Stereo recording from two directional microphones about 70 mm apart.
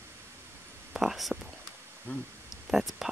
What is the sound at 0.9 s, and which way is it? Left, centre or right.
Whispering, centre.